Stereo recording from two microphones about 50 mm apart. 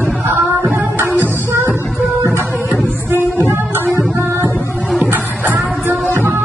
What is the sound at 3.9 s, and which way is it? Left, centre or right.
Music, right.